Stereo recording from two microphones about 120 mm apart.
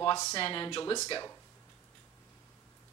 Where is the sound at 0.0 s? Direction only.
35° left (ahead or behind).